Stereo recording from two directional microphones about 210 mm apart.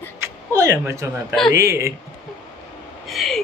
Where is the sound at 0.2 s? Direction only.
15° right (ahead or behind).